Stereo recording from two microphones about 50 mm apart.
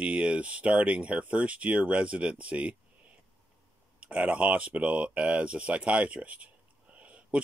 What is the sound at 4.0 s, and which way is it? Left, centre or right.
Speech, right.